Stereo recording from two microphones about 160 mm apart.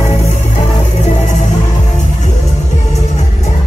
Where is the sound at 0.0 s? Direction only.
45° left (ahead or behind).